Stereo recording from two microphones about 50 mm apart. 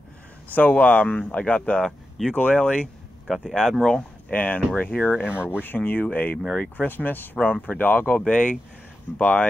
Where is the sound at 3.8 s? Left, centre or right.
Centre.